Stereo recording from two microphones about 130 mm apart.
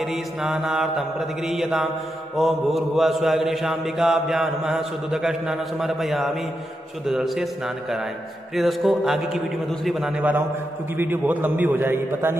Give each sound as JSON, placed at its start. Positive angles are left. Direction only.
{"t": 0.0, "sound": "mantra", "side_deg": -5}
{"t": 11.0, "sound": "a man's voice", "side_deg": -15}